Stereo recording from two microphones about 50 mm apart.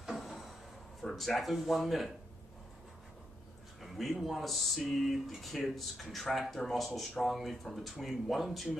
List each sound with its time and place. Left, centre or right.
0.0 s a sound: centre
1.0 s speech: centre
3.8 s speech: centre